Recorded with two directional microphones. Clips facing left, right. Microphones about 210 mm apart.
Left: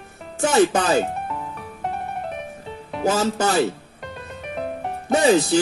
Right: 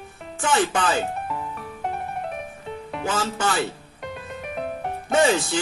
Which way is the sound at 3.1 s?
40° left (ahead or behind).